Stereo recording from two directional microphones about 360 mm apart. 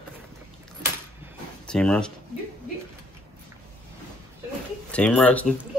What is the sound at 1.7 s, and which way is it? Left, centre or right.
Speech, centre.